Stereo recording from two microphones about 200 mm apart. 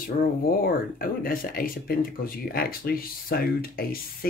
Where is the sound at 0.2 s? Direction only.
45° left (ahead or behind).